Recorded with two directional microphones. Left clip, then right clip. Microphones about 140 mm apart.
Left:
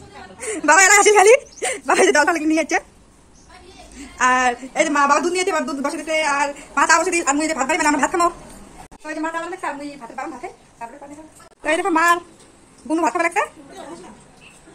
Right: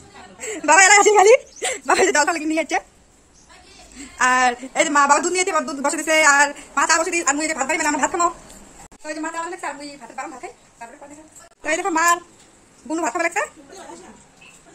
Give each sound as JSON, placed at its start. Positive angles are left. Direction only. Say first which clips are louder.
{"t": 0.7, "sound": "a sound", "louder": "even", "side_deg": -20}
{"t": 1.3, "sound": "speech", "louder": "even", "side_deg": -20}
{"t": 1.9, "sound": "a woman's voice", "louder": "left 2 dB", "side_deg": 0}
{"t": 4.2, "sound": "a woman's voice", "louder": "even", "side_deg": -20}
{"t": 5.9, "sound": "speech", "louder": "right 6 dB", "side_deg": -55}
{"t": 6.7, "sound": "a woman's voice", "louder": "left 3 dB", "side_deg": 0}
{"t": 7.2, "sound": "speech", "louder": "left 2 dB", "side_deg": -15}
{"t": 8.0, "sound": "speech", "louder": "left 2 dB", "side_deg": -20}
{"t": 9.0, "sound": "a woman's voice", "louder": "left 2 dB", "side_deg": 0}